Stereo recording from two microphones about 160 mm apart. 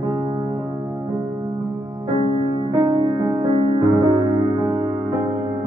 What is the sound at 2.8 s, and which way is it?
Music, 35° right (ahead or behind).